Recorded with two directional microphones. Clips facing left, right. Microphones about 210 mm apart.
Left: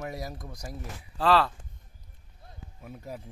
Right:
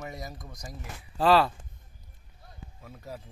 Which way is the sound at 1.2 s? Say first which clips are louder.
Right 2 dB; 15° right (ahead or behind).